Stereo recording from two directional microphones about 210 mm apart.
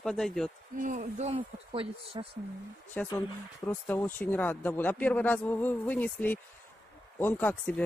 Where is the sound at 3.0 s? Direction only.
5° left (ahead or behind).